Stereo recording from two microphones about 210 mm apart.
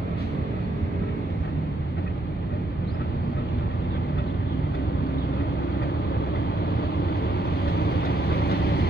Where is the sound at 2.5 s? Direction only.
45° left (ahead or behind).